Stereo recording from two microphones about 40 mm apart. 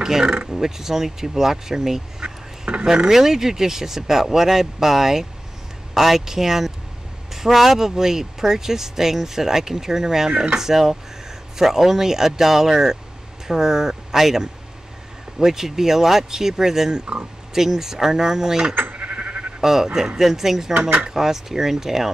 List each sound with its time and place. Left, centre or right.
0.0 s speech: centre
3.1 s speech: centre
17.0 s speech: right
17.6 s speech: centre
18.9 s sheep: right
19.6 s speech: centre